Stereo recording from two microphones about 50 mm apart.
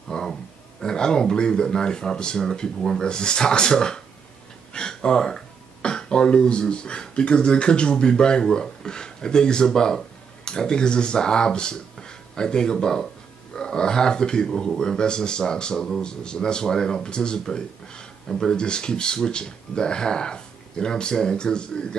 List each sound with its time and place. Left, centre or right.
0.1 s speech: centre